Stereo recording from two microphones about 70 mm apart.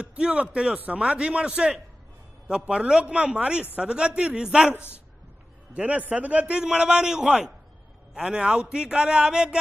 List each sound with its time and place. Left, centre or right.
0.0 s a man's voice: centre
5.8 s a man's voice: centre